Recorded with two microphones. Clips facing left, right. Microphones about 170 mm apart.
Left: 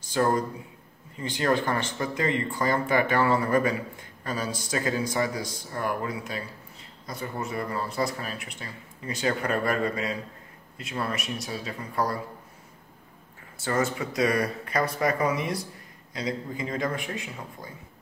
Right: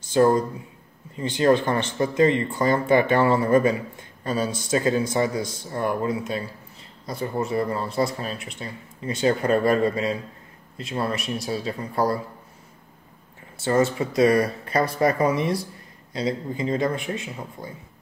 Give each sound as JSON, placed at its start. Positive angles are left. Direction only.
{"t": 0.1, "sound": "speech", "side_deg": -25}
{"t": 13.6, "sound": "speech", "side_deg": -30}